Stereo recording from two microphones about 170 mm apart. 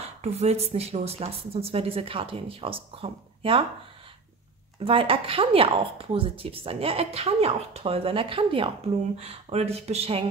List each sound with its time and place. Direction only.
0.2 s speech: 40° right (ahead or behind)
4.7 s speech: 35° right (ahead or behind)